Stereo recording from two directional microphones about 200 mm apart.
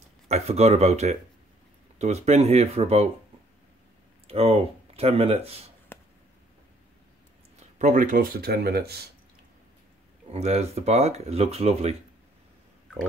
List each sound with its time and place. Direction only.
0.3 s speech: 30° right (ahead or behind)
4.3 s speech: 30° right (ahead or behind)
5.9 s arrow: 10° left (ahead or behind)
7.8 s speech: 40° right (ahead or behind)
10.3 s speech: 35° right (ahead or behind)